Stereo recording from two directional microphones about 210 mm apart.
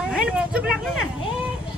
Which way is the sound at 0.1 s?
5° right (ahead or behind).